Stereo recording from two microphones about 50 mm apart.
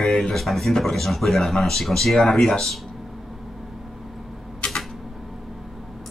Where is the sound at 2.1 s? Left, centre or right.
Centre.